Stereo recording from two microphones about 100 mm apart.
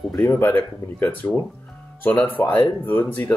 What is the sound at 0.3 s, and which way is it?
Speech, 15° left (ahead or behind).